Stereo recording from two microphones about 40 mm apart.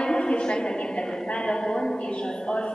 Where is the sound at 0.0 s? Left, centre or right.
Left.